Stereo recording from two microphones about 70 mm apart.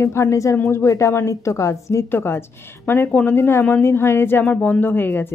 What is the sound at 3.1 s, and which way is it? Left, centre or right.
Speech, centre.